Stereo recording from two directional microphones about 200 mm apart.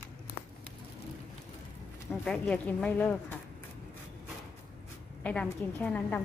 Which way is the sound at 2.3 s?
5° left (ahead or behind).